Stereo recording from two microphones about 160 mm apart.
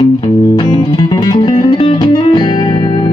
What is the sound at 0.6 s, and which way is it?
Music, 25° left (ahead or behind).